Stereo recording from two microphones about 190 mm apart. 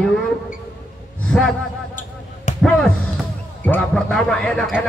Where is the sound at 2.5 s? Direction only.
40° left (ahead or behind).